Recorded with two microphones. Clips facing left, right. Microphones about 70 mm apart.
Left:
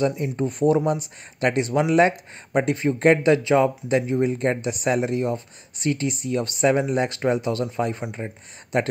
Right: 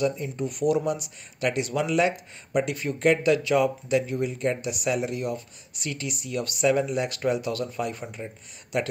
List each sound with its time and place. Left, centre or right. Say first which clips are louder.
0.2 s speech: left 5 dB; left
8.2 s speech: left 4 dB; left